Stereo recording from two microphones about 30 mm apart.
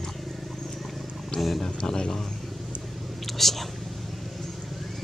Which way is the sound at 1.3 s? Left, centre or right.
Left.